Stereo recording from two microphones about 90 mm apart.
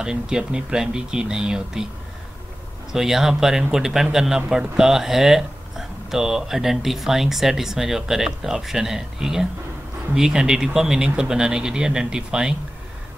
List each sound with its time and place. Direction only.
0.0 s speech: 10° right (ahead or behind)
2.9 s speech: 5° right (ahead or behind)